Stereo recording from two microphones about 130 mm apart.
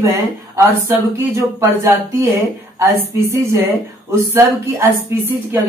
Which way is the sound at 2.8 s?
25° right (ahead or behind).